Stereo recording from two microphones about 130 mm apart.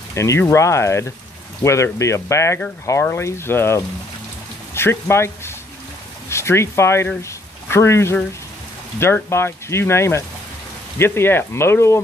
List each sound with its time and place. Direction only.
0.1 s speech: 20° left (ahead or behind)